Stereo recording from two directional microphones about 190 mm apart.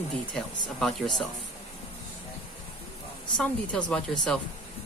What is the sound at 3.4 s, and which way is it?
Speech, 5° left (ahead or behind).